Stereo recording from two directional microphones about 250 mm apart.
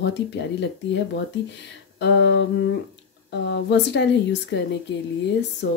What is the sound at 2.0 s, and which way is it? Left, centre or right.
Speech, left.